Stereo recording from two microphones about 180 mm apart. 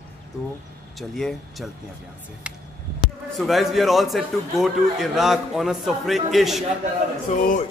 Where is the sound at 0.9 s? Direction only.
Centre (ahead or behind).